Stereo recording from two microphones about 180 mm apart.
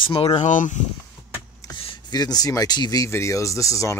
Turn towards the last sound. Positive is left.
turn(degrees=15)  # may be behind; listen again after turning